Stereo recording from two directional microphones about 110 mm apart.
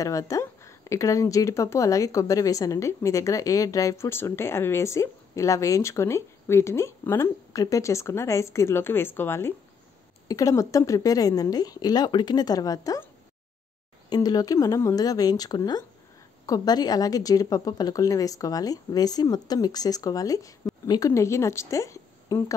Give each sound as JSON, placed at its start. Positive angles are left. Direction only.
{"t": 0.0, "sound": "speech", "side_deg": 30}
{"t": 10.2, "sound": "a woman's voice", "side_deg": 30}
{"t": 14.0, "sound": "a woman's voice", "side_deg": 35}